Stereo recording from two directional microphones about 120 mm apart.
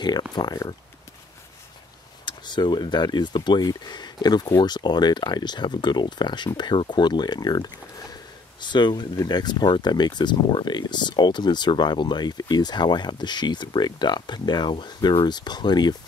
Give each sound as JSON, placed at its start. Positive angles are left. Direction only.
{"t": 0.0, "sound": "speech", "side_deg": 35}
{"t": 2.2, "sound": "speech", "side_deg": 40}